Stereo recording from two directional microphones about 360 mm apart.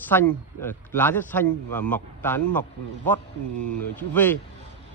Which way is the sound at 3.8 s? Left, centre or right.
Centre.